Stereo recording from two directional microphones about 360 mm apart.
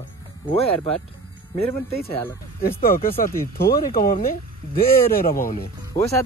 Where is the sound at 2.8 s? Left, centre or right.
Left.